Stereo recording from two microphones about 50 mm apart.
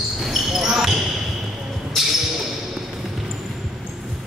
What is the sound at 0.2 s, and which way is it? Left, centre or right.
Basketball bounce, centre.